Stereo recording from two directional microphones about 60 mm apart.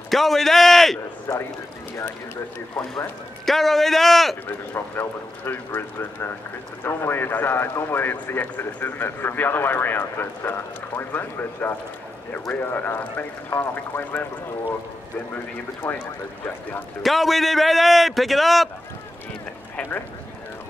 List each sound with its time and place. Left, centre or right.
0.1 s a man's voice: centre
1.3 s speech: left
3.4 s a man's voice: centre
4.7 s a man's voice: left
17.0 s a man's voice: centre